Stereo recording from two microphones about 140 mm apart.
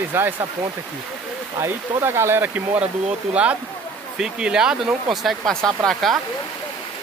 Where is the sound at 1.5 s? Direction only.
20° right (ahead or behind); by 6.2 s centre (ahead or behind).